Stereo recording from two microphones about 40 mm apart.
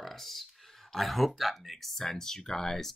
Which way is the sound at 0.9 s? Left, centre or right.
Centre.